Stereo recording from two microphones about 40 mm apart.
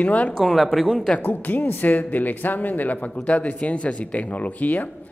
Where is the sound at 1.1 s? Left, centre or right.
Left.